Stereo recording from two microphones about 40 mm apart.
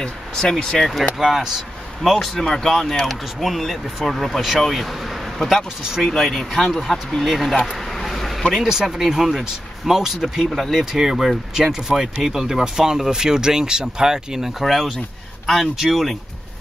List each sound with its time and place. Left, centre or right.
0.0 s speech: centre
1.1 s speech: centre
2.0 s speech: centre
2.3 s speech: centre
5.4 s speech: centre
7.7 s vehicle: centre
8.5 s speech: centre
14.6 s speech: centre